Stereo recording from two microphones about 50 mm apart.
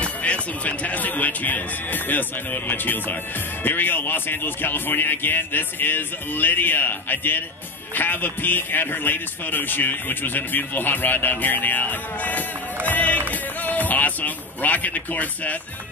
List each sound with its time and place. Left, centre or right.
0.0 s music: left
3.6 s speech: left
7.9 s music: left